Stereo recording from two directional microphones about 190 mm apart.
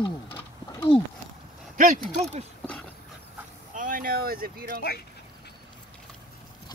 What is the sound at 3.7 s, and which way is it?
Speech, 45° right (ahead or behind).